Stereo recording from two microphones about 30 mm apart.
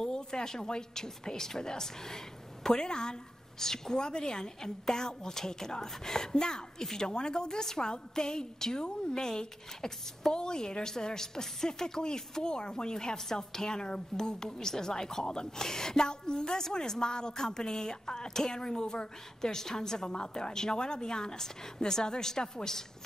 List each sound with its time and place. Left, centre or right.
0.0 s speech: left